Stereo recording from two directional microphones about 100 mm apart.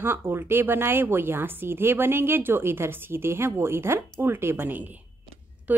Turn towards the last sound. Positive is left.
turn(degrees=-15)  # may be behind; listen again after turning